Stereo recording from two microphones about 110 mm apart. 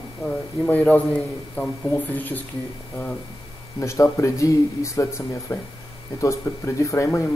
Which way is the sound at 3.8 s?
25° left (ahead or behind).